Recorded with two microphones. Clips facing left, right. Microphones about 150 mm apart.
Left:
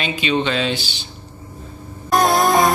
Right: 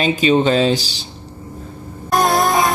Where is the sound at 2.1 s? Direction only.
Centre (ahead or behind).